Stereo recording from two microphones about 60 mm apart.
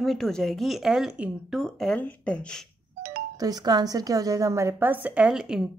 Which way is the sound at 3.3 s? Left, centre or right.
Right.